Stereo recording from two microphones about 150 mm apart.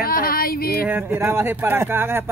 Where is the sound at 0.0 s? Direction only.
80° left.